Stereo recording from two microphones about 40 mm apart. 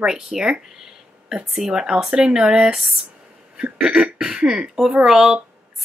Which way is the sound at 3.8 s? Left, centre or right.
Right.